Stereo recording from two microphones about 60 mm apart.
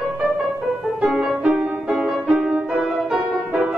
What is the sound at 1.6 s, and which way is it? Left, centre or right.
Music, right.